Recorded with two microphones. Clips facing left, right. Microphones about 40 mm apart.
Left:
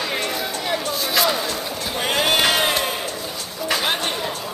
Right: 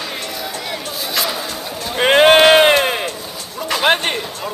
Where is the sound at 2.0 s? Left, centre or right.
Right.